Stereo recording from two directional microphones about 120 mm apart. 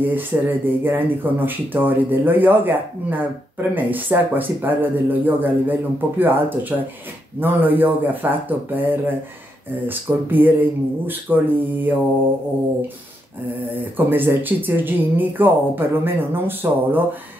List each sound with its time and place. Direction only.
0.0 s speech: 15° right (ahead or behind)
13.7 s speech: 15° right (ahead or behind)